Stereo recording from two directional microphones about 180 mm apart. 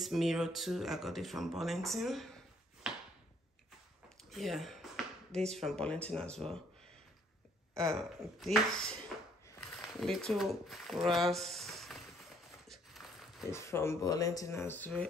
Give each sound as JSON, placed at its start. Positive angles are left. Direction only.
{"t": 0.0, "sound": "speech", "side_deg": 0}
{"t": 4.3, "sound": "a sound", "side_deg": 0}
{"t": 5.5, "sound": "speech", "side_deg": 0}
{"t": 7.7, "sound": "speech", "side_deg": 0}
{"t": 12.6, "sound": "a sound", "side_deg": 0}
{"t": 13.5, "sound": "speech", "side_deg": 15}